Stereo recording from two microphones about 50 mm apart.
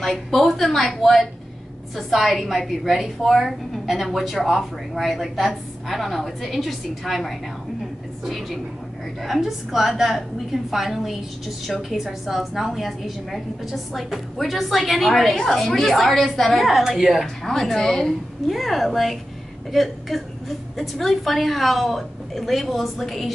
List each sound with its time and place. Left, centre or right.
0.0 s a woman's voice: centre
17.5 s speech: centre
18.5 s a woman's voice: centre